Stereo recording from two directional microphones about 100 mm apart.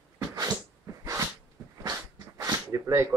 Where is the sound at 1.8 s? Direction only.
35° right (ahead or behind).